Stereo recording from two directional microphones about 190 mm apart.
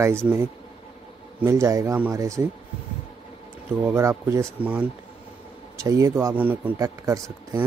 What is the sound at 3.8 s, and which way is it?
Speech, 15° right (ahead or behind).